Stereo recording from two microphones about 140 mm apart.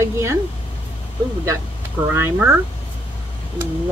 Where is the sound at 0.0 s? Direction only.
20° right (ahead or behind).